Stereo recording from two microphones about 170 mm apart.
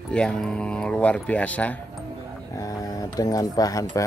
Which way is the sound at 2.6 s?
20° left (ahead or behind).